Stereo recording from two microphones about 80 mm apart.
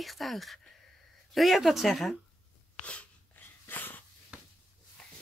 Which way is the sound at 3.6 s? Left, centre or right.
Left.